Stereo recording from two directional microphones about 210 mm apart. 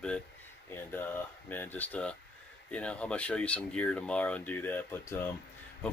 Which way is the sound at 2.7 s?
5° left (ahead or behind).